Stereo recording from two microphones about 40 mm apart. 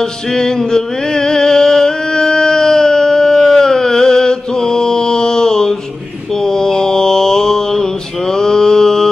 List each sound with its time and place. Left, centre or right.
0.0 s music: centre
6.4 s mantra: centre